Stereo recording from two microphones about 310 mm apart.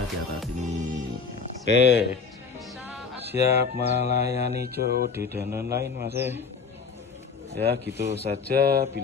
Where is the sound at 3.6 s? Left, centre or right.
Right.